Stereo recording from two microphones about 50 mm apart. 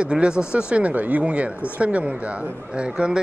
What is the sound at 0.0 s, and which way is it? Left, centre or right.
Speech, right.